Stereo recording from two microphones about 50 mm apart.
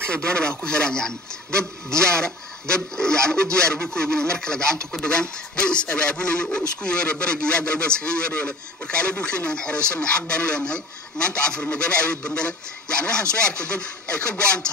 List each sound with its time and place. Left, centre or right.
0.0 s speech: left